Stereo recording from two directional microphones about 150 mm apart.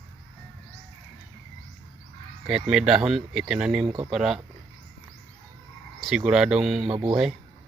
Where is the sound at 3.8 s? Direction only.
35° right (ahead or behind).